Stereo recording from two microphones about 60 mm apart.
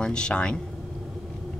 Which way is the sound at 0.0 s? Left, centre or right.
Centre.